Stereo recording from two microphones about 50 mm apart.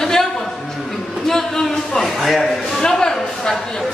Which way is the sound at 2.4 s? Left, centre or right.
Centre.